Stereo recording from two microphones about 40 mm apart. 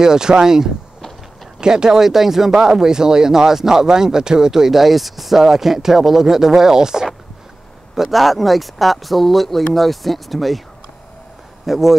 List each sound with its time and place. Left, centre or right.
0.0 s speech: centre
7.9 s speech: centre
11.6 s speech: centre